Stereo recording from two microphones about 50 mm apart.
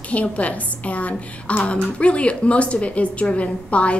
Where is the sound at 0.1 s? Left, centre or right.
Left.